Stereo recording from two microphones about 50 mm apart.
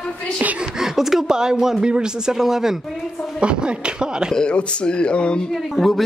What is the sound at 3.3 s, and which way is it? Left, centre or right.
Speech, centre.